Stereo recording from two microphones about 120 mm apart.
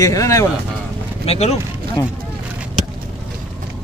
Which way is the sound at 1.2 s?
60° left (ahead or behind).